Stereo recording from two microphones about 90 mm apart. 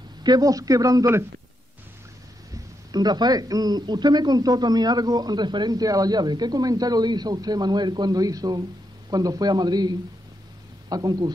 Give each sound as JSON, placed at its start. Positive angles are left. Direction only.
{"t": 0.2, "sound": "a man's voice", "side_deg": -45}
{"t": 2.5, "sound": "speech", "side_deg": -50}